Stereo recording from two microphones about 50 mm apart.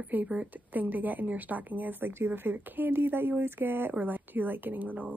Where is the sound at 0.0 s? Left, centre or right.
Right.